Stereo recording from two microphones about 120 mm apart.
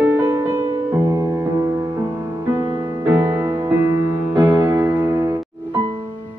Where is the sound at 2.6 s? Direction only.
20° right (ahead or behind).